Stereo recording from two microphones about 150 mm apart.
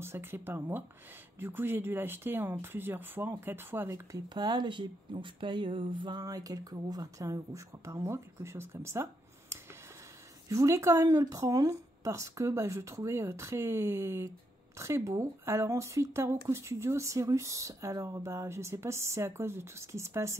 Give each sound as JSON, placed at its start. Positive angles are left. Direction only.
{"t": 0.0, "sound": "speech", "side_deg": -15}
{"t": 4.3, "sound": "speech", "side_deg": -30}